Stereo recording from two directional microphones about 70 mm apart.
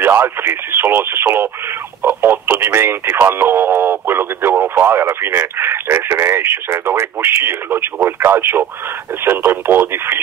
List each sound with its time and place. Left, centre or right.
0.0 s speech: right